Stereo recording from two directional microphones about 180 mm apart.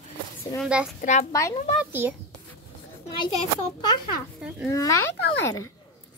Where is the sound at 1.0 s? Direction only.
40° left (ahead or behind).